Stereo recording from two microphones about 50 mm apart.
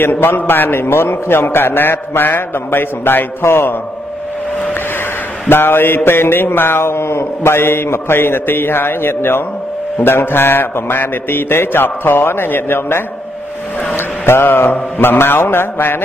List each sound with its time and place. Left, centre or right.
0.0 s mantra: left
5.5 s mantra: left